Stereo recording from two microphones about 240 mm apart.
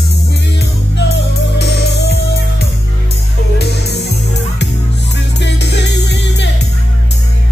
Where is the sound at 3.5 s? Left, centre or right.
Left.